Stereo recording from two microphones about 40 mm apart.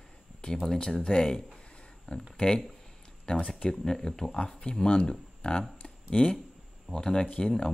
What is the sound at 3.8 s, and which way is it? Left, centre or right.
Speech, centre.